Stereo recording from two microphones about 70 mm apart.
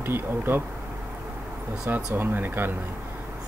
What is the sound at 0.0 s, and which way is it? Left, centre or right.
Speech, right.